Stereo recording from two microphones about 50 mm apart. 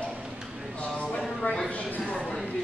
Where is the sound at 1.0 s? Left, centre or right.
Centre.